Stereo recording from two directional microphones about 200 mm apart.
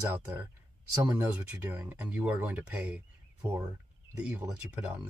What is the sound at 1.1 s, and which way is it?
Speech, 10° right (ahead or behind).